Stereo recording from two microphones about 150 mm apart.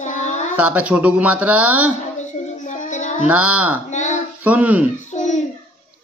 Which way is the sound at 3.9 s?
55° left (ahead or behind).